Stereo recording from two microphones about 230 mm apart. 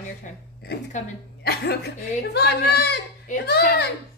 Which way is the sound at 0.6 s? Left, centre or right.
Left.